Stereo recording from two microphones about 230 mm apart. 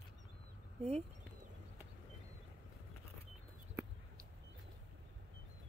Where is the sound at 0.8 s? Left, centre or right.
Right.